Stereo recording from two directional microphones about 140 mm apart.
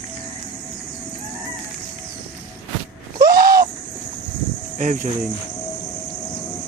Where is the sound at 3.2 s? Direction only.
90° right.